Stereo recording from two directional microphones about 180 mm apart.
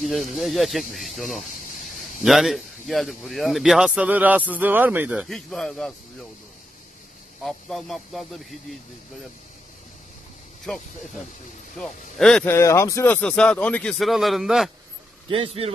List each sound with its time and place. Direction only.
0.0 s a man's voice: centre (ahead or behind)
5.3 s a man's voice: centre (ahead or behind)
7.4 s a man's voice: centre (ahead or behind)
10.7 s a man's voice: 5° left (ahead or behind)
12.5 s a man's voice: 15° left (ahead or behind); by 14.7 s centre (ahead or behind)
15.2 s speech: 30° right (ahead or behind)